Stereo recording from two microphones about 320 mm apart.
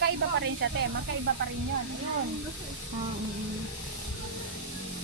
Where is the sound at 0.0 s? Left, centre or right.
Right.